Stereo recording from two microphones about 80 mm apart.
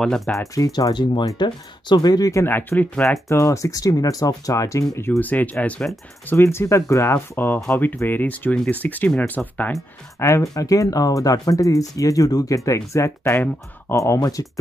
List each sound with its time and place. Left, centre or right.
0.0 s speech: centre
0.4 s speech: left
2.3 s speech: left
3.3 s speech: left
5.2 s speech: left
6.2 s speech: left
10.1 s speech: left
13.4 s speech: left
13.9 s speech: left